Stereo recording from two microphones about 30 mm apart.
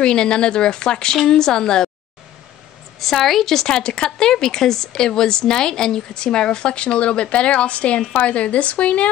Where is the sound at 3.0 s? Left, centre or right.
Centre.